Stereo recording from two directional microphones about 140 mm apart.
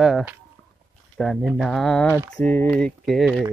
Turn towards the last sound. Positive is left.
turn(degrees=0)  # may be behind; listen again after turning